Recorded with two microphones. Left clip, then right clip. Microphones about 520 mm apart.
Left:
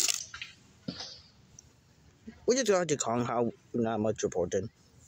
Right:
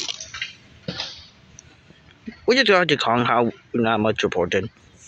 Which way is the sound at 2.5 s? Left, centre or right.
Left.